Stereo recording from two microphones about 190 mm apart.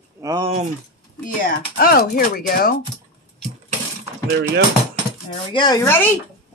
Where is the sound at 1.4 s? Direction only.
50° left (ahead or behind).